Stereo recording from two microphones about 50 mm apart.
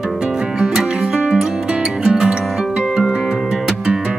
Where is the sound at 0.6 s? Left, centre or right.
Centre.